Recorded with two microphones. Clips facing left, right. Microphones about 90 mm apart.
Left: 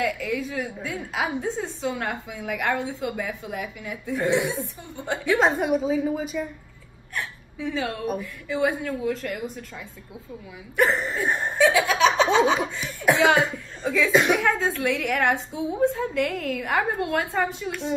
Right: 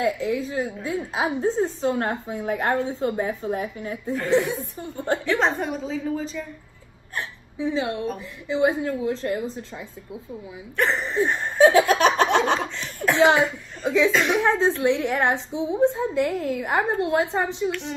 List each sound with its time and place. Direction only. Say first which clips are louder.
0.0 s a woman's voice: right 3 dB; 35° right (ahead or behind)
4.9 s laughter: right 5 dB; 45° right (ahead or behind)
5.2 s a woman's voice: left 5 dB; 5° left (ahead or behind)
7.5 s a woman's voice: right 3 dB; 20° right (ahead or behind)
10.8 s a woman's voice: even; 5° left (ahead or behind)
11.6 s laughter: right 4 dB; 45° right (ahead or behind)
12.5 s a woman's voice: left 1 dB; 10° left (ahead or behind)
13.8 s a woman's voice: even; 20° right (ahead or behind)
17.6 s a woman's voice: right 1 dB; 15° left (ahead or behind)